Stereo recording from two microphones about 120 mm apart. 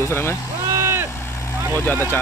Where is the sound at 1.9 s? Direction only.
15° left (ahead or behind).